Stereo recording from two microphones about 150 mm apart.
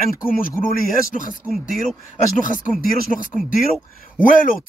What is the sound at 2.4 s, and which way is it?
Speech, 60° left (ahead or behind).